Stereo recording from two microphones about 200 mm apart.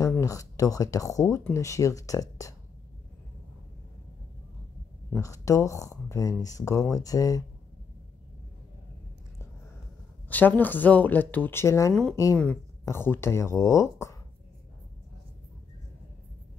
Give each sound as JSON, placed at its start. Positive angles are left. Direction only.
{"t": 0.0, "sound": "speech", "side_deg": 15}
{"t": 5.1, "sound": "speech", "side_deg": 15}
{"t": 10.2, "sound": "speech", "side_deg": 10}
{"t": 11.9, "sound": "speech", "side_deg": 0}